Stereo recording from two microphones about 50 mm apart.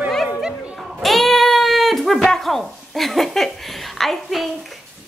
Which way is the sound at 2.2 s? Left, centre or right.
Centre.